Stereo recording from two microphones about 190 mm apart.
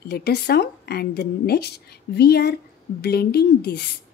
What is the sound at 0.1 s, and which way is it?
A woman's voice, 60° left (ahead or behind).